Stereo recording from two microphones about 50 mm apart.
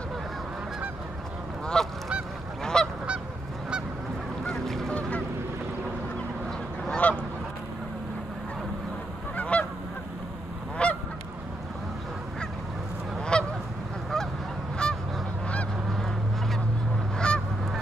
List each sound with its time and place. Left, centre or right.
1.7 s goose: centre
4.5 s goose: centre
7.0 s goose: left
9.4 s goose: left
10.8 s goose: left
13.2 s goose: centre
14.8 s goose: centre
17.2 s goose: centre